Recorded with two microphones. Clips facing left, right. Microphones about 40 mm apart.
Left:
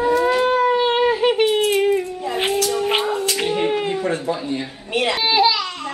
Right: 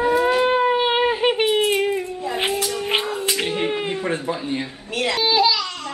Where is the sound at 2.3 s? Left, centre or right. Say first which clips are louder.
Left 4 dB; centre.